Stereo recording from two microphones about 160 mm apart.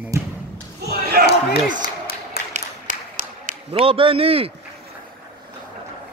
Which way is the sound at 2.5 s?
55° right (ahead or behind).